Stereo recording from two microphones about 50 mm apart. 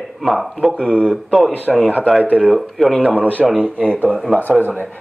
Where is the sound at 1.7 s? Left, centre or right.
Centre.